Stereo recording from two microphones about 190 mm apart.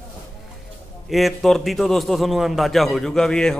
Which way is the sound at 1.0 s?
Centre (ahead or behind).